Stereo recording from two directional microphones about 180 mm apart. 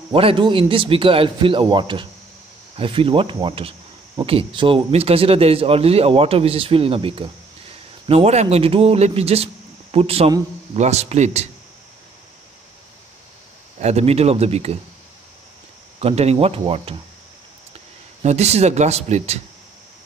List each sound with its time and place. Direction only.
0.1 s speech: 30° right (ahead or behind)
13.7 s speech: 35° right (ahead or behind)
16.0 s speech: 35° right (ahead or behind)
18.2 s speech: 35° right (ahead or behind)